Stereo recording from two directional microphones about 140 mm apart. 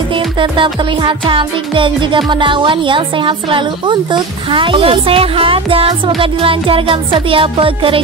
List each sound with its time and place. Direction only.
0.1 s music: 35° right (ahead or behind)